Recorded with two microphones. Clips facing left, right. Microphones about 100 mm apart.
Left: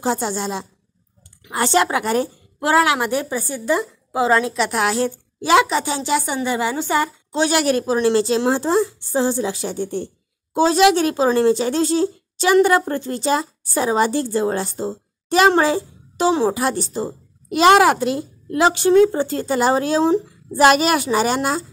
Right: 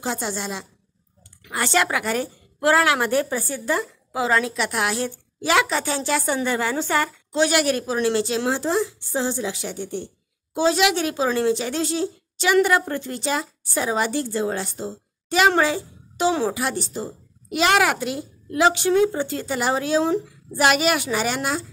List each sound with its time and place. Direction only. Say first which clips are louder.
0.0 s a woman's voice: left 6 dB; 35° left (ahead or behind); by 7.1 s 15° left (ahead or behind)
7.3 s a woman's voice: left 2 dB; 30° left (ahead or behind)